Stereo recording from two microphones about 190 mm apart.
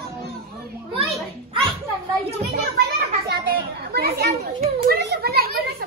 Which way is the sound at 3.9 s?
55° right (ahead or behind).